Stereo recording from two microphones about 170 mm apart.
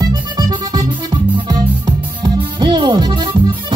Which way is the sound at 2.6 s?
25° right (ahead or behind).